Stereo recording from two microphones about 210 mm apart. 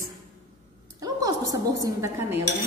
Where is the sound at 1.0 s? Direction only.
15° right (ahead or behind).